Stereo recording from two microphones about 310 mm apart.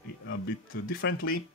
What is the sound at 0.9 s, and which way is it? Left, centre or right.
Speech, left.